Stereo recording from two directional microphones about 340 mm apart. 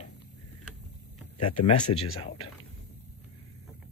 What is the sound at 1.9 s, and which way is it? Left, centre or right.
Speech, left.